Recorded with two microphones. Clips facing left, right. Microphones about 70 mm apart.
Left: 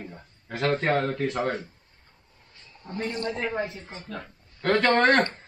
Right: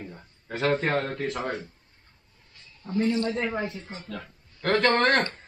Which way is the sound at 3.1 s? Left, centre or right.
Left.